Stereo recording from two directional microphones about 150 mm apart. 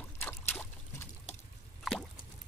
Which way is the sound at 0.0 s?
15° left (ahead or behind).